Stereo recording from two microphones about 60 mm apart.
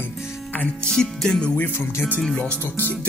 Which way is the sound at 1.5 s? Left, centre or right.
Left.